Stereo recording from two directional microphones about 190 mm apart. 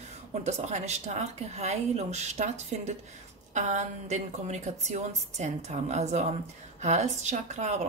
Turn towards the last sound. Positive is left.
turn(degrees=-35)  # may be behind; listen again after turning